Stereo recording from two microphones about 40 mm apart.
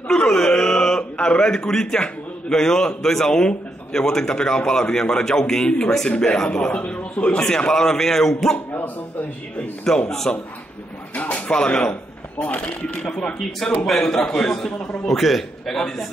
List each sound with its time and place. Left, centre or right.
0.3 s wail: centre
1.1 s a man's voice: left
6.0 s speech: left
7.4 s a man's voice: centre
9.8 s a man's voice: centre
11.1 s a man's voice: left; by 14.7 s centre
15.0 s a man's voice: centre